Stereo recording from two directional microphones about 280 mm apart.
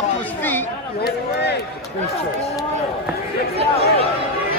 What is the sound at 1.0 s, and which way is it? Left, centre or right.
Speech, left.